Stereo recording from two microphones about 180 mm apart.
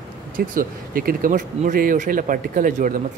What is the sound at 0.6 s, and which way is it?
Speech, 50° right (ahead or behind).